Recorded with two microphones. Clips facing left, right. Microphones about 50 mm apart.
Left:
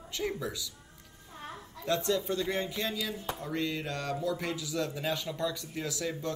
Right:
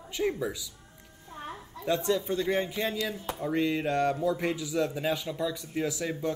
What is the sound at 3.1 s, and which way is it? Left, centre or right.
Speech, centre.